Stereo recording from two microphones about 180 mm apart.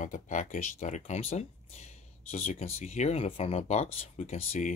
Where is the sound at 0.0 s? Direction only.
45° left (ahead or behind).